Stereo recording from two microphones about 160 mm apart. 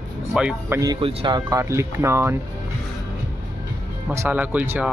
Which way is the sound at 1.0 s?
35° right (ahead or behind).